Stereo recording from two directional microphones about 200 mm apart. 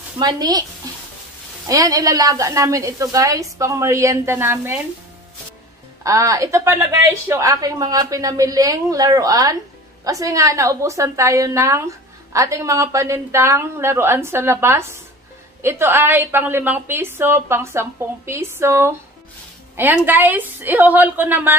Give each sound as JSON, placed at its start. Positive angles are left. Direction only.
{"t": 0.2, "sound": "speech", "side_deg": -20}
{"t": 1.7, "sound": "a woman's voice", "side_deg": -15}
{"t": 6.0, "sound": "a woman's voice", "side_deg": -15}